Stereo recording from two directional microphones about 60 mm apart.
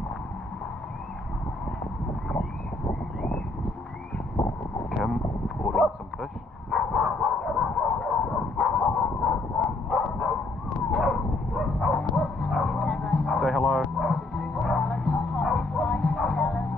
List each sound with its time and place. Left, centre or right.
2.9 s a sound: centre
4.9 s a sound: centre
5.8 s bow-wow: centre
8.8 s dog: centre
11.0 s bow-wow: centre
13.2 s music: centre
14.1 s music: centre